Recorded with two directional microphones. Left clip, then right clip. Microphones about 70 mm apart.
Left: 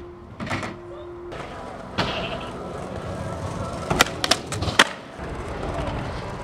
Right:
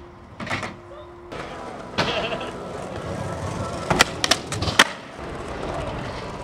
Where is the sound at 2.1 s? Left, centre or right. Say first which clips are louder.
Right 3 dB; right.